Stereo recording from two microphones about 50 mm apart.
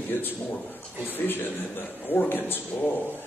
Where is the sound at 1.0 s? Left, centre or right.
Left.